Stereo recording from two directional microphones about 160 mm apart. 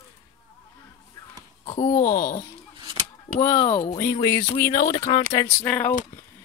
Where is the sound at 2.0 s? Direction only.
65° left (ahead or behind).